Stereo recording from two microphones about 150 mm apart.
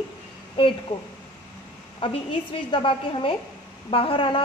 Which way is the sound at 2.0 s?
35° left (ahead or behind).